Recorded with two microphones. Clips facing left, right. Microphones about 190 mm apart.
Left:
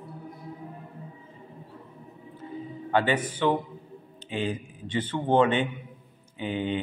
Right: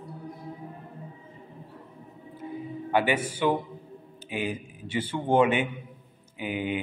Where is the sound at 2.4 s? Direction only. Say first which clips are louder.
Right 2 dB; 15° right (ahead or behind).